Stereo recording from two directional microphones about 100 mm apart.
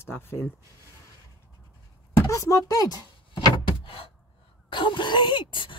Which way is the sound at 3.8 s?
70° left (ahead or behind).